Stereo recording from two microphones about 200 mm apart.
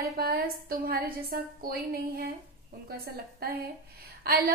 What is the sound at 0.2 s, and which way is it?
A woman's voice, 50° right (ahead or behind).